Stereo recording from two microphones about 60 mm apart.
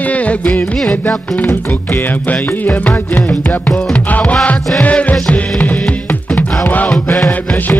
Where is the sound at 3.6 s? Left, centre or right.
Centre.